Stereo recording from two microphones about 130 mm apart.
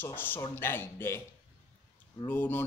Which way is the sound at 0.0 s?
15° left (ahead or behind).